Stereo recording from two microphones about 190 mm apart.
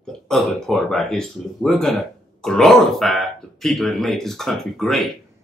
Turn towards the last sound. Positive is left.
turn(degrees=0)  # may be behind; listen again after turning